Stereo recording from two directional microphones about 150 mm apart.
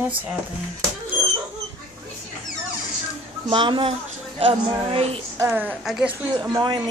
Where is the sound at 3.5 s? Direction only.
35° right (ahead or behind).